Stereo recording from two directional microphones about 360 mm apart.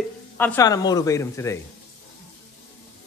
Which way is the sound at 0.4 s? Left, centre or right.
Centre.